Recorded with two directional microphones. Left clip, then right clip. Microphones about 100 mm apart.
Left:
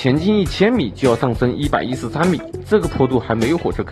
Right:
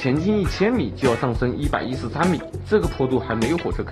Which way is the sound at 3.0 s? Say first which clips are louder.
Left 5 dB; 40° left (ahead or behind).